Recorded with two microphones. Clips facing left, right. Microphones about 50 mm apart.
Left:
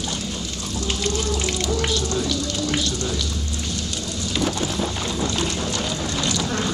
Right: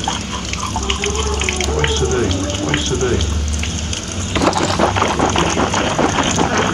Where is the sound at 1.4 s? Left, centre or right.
Right.